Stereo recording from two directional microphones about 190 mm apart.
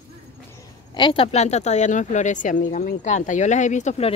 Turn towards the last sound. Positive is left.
turn(degrees=35)  # may be behind; listen again after turning